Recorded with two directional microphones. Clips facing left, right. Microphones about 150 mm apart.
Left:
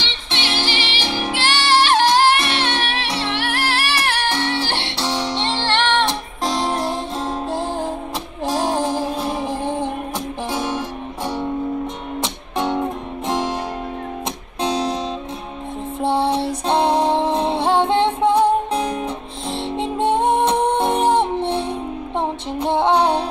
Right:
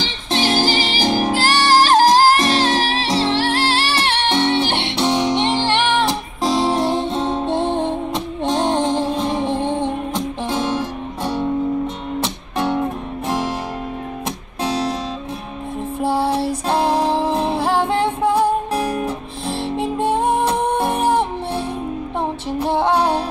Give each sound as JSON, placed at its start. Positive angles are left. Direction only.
{"t": 0.0, "sound": "music", "side_deg": -40}
{"t": 14.6, "sound": "guitar", "side_deg": 20}
{"t": 16.0, "sound": "music", "side_deg": 20}